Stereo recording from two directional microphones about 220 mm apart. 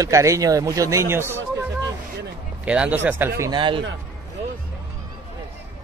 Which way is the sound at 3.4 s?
20° right (ahead or behind).